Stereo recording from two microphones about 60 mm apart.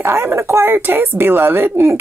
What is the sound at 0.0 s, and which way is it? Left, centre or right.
Speech, right.